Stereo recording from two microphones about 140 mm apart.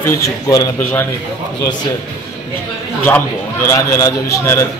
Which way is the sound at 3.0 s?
15° left (ahead or behind).